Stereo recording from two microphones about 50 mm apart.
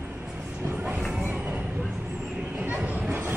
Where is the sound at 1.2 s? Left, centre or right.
Right.